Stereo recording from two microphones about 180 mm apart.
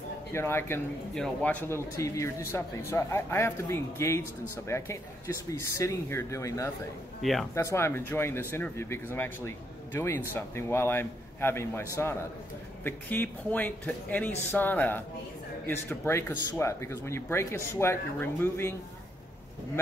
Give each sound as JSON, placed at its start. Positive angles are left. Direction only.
{"t": 0.3, "sound": "speech", "side_deg": 15}
{"t": 7.2, "sound": "speech", "side_deg": 0}
{"t": 7.5, "sound": "speech", "side_deg": 15}